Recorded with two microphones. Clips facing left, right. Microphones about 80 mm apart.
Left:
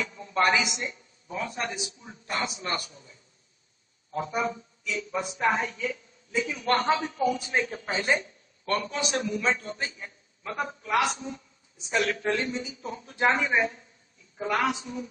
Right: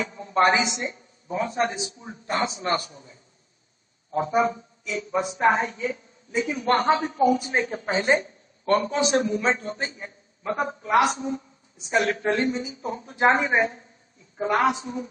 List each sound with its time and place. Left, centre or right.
0.0 s a woman's voice: right